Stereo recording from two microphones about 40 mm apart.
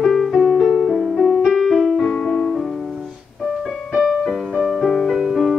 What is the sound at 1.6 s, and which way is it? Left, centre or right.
Keyboard, centre.